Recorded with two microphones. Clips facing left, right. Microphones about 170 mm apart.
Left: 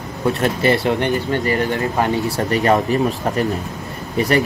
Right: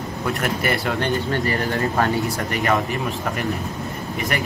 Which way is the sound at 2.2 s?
35° left (ahead or behind).